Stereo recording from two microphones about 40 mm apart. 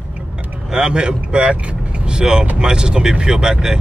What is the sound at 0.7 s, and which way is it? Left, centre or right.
Speech, right.